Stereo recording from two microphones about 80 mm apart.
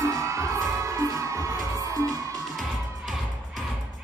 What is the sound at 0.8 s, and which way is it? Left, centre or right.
Music, right.